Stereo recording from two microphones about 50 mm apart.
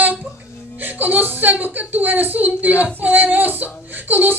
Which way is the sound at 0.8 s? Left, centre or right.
Right.